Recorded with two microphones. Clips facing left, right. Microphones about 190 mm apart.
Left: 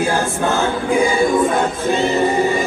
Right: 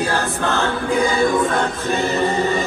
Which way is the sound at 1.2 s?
20° left (ahead or behind).